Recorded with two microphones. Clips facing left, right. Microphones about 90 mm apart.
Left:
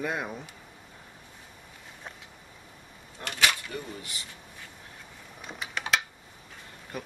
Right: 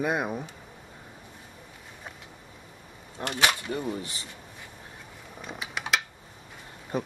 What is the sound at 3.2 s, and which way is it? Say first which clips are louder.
Speech: right 2 dB; 30° right (ahead or behind).